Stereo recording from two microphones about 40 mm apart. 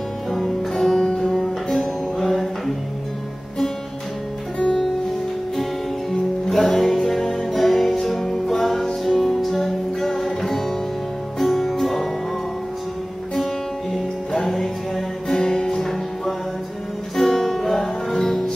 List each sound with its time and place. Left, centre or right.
0.3 s music: centre
4.6 s music: left
6.4 s music: centre
14.3 s music: centre